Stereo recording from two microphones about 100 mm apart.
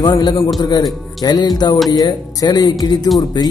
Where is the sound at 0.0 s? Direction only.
45° left (ahead or behind).